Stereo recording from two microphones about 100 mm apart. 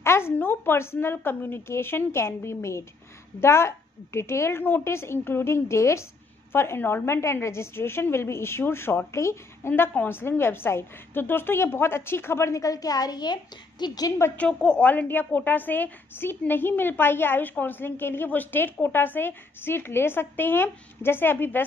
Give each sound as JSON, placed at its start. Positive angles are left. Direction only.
{"t": 0.0, "sound": "a woman's voice", "side_deg": 25}
{"t": 14.3, "sound": "a woman's voice", "side_deg": 10}